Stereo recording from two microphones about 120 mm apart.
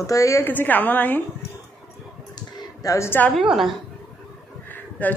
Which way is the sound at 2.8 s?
25° left (ahead or behind).